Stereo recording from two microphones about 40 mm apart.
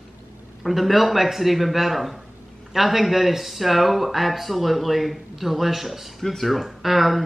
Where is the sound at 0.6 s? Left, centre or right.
Centre.